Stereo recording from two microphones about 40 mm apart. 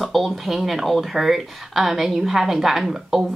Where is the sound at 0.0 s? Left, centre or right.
Centre.